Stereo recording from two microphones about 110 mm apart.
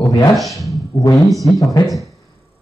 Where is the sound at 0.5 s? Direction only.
30° left (ahead or behind).